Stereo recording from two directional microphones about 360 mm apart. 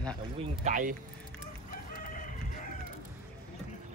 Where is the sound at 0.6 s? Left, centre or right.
Right.